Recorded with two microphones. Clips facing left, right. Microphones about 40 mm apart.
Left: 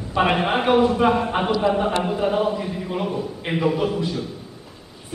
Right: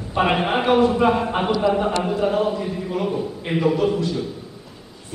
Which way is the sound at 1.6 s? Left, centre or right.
Centre.